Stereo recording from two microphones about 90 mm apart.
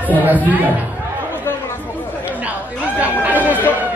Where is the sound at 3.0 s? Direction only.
15° right (ahead or behind).